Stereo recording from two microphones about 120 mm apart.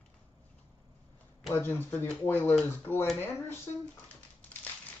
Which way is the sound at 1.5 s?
20° left (ahead or behind).